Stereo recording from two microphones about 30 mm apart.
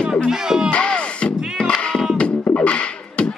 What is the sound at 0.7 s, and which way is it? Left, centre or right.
Music, left.